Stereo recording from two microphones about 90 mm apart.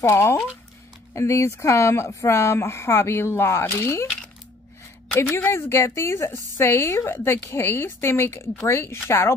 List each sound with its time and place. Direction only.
0.0 s speech: 30° left (ahead or behind)
5.1 s a woman's voice: 30° left (ahead or behind)